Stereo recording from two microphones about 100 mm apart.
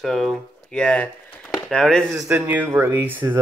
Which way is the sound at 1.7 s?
10° left (ahead or behind).